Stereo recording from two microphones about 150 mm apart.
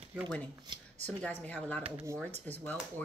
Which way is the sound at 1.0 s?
10° left (ahead or behind).